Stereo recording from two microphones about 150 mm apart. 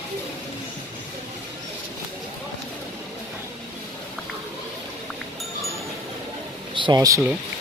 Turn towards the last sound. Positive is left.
turn(degrees=-20)  # may be behind; listen again after turning